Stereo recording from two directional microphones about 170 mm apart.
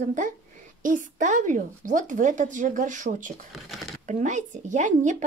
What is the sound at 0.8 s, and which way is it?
Speech, 50° right (ahead or behind).